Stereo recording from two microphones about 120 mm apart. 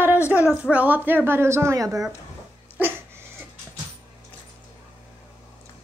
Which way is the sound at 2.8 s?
20° right (ahead or behind).